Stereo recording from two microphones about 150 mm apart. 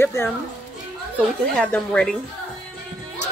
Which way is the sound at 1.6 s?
5° left (ahead or behind).